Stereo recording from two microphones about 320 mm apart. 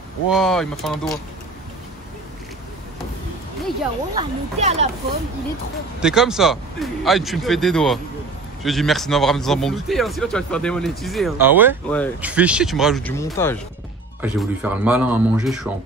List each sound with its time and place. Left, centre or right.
0.3 s speech: centre
4.1 s speech: centre
5.9 s speech: centre
14.2 s speech: centre